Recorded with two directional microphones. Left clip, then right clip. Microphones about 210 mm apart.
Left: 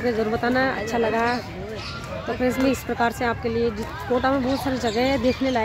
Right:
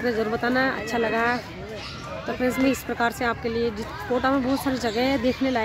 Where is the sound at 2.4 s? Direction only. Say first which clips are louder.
Left 1 dB; 5° right (ahead or behind).